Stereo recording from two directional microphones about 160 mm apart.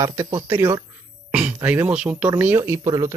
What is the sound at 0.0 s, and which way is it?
Speech, 20° right (ahead or behind).